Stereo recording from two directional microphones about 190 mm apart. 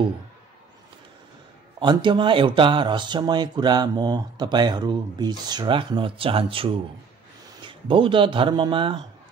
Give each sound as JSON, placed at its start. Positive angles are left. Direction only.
{"t": 1.8, "sound": "speech", "side_deg": -25}